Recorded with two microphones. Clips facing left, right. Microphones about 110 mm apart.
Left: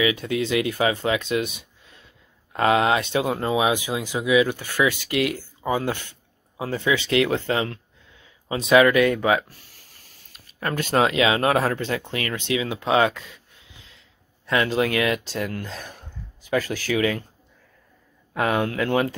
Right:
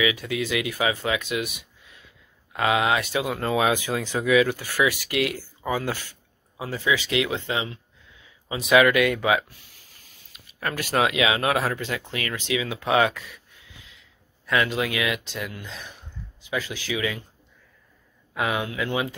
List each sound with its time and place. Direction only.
0.0 s speech: 30° left (ahead or behind)
3.4 s speech: 20° left (ahead or behind)
6.6 s speech: 40° left (ahead or behind)
10.6 s speech: 30° left (ahead or behind); by 17.2 s 45° left (ahead or behind)
18.3 s speech: 45° left (ahead or behind)